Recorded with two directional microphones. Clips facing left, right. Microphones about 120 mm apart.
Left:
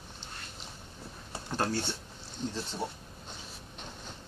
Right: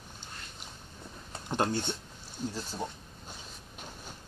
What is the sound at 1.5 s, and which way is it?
Speech, 20° right (ahead or behind).